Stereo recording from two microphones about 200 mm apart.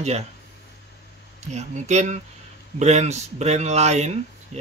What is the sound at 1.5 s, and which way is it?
Speech, 35° right (ahead or behind).